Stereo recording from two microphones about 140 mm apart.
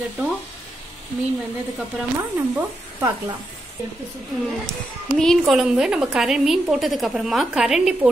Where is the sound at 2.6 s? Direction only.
15° right (ahead or behind).